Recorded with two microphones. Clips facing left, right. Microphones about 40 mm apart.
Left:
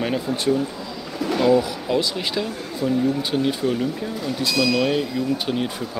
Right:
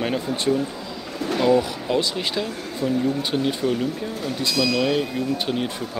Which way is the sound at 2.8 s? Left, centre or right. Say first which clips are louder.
Left 1 dB; left.